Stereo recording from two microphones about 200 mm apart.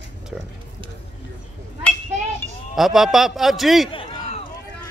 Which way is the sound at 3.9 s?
25° left (ahead or behind).